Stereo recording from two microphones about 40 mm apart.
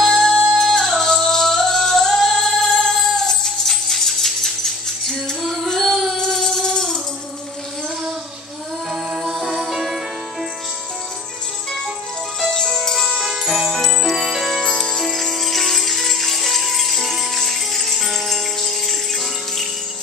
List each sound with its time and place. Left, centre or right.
0.0 s music: centre
0.6 s singing: centre
2.8 s music: centre
5.4 s music: centre
5.7 s singing: centre
6.3 s music: centre
8.9 s music: centre
12.4 s music: centre
13.1 s jingle bell: centre
13.7 s music: centre
14.1 s music: centre
14.6 s music: centre